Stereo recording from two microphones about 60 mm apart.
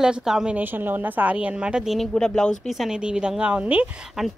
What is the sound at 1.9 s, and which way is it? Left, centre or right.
Speech, centre.